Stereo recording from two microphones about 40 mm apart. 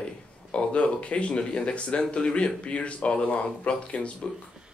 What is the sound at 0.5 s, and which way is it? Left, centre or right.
Speech, left.